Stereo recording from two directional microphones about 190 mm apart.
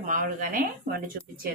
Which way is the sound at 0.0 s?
40° right (ahead or behind).